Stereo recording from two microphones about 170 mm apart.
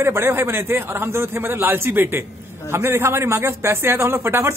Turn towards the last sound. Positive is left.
turn(degrees=-15)  # may be behind; listen again after turning